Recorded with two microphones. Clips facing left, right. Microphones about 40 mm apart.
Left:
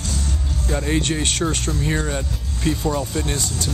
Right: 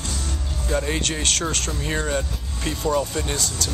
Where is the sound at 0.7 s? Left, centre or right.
Centre.